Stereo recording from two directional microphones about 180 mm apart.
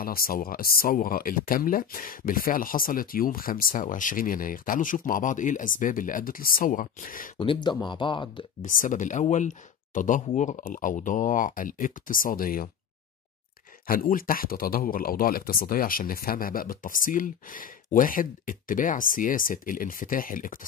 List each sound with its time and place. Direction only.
0.0 s speech: 55° left (ahead or behind)
7.3 s speech: 30° left (ahead or behind)
8.6 s speech: 45° left (ahead or behind)
13.8 s speech: 50° left (ahead or behind)